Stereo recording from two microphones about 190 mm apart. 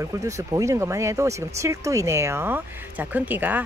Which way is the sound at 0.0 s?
15° right (ahead or behind).